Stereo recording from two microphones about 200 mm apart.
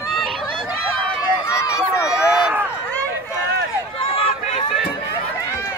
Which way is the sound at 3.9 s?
30° left (ahead or behind).